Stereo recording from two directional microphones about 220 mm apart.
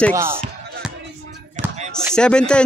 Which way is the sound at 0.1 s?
10° right (ahead or behind).